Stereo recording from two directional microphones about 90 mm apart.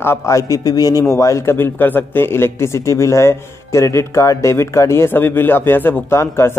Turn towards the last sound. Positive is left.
turn(degrees=30)  # may be behind; listen again after turning